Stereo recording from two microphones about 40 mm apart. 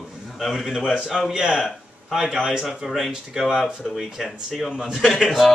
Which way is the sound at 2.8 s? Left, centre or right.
Centre.